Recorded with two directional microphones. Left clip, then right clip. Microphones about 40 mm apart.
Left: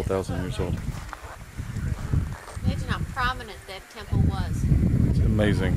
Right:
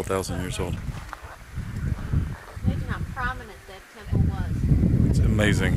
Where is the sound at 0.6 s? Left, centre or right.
Centre.